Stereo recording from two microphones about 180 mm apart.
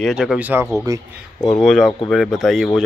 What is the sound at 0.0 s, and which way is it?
Speech, centre (ahead or behind).